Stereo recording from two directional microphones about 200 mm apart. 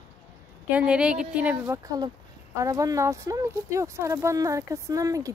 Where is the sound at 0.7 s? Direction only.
5° right (ahead or behind).